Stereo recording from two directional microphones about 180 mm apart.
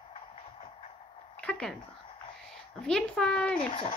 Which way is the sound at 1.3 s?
5° left (ahead or behind).